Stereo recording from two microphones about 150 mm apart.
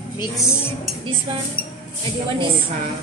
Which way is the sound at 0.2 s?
20° left (ahead or behind).